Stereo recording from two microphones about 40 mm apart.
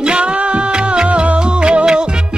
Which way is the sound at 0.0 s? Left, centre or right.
Right.